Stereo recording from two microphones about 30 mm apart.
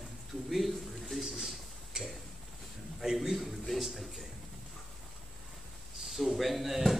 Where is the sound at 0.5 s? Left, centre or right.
Centre.